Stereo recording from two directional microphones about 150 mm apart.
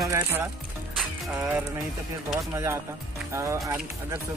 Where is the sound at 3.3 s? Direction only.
20° right (ahead or behind).